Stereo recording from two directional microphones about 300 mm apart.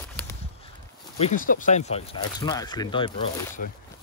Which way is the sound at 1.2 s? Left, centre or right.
Left.